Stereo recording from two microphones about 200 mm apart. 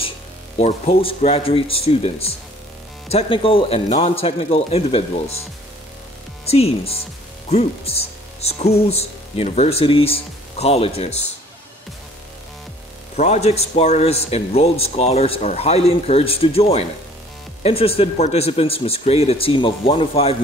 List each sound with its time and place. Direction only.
0.6 s speech: 30° left (ahead or behind)
6.4 s speech: 30° left (ahead or behind)
13.1 s speech: 35° left (ahead or behind)